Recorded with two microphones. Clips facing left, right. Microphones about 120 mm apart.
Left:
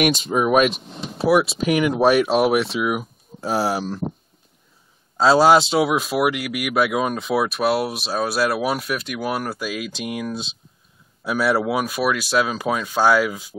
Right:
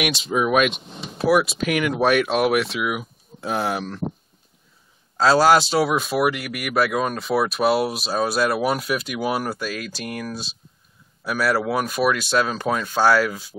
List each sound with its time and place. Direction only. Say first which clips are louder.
0.3 s speech: even; 40° left (ahead or behind)
0.7 s speech: left 1 dB; centre (ahead or behind)
1.6 s speech: left 3 dB; 30° left (ahead or behind)
5.3 s speech: left 2 dB; 25° left (ahead or behind)
5.6 s speech: left 1 dB; centre (ahead or behind); by 11.5 s 20° left (ahead or behind)
11.5 s speech: left 1 dB; 5° left (ahead or behind)